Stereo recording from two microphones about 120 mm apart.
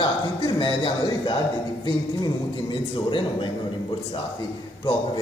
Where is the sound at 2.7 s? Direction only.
45° left (ahead or behind).